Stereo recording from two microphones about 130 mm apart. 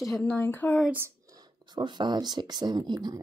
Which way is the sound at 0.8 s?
20° right (ahead or behind).